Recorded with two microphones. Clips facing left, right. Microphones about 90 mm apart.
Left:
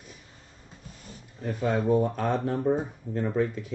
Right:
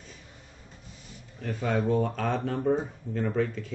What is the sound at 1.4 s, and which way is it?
Speech, 20° left (ahead or behind).